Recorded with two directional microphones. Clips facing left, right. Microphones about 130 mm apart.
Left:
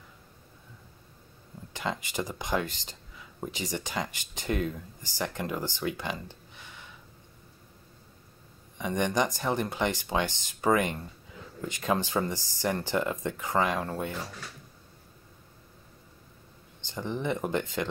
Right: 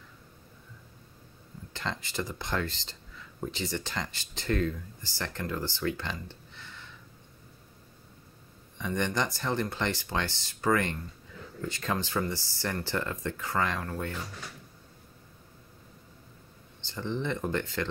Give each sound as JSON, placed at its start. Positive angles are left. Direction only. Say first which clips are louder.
{"t": 1.7, "sound": "speech", "louder": "left 3 dB", "side_deg": 15}
{"t": 8.7, "sound": "speech", "louder": "left 3 dB", "side_deg": 15}
{"t": 16.8, "sound": "speech", "louder": "left 1 dB", "side_deg": 15}